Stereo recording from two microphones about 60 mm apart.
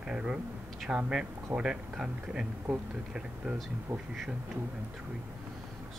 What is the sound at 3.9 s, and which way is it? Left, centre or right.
Speech, right.